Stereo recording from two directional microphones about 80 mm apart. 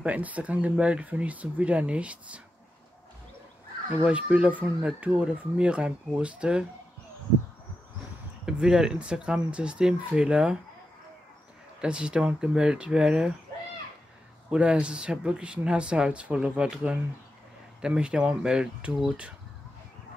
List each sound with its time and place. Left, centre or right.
0.0 s speech: centre
3.9 s speech: centre
8.5 s speech: centre
11.8 s speech: centre
14.5 s speech: centre